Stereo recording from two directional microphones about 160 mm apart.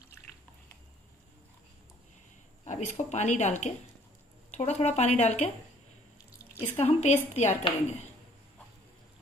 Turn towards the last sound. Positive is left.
turn(degrees=45)  # may be behind; listen again after turning